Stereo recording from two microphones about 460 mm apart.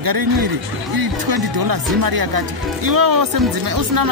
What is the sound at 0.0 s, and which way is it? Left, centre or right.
Speech, right.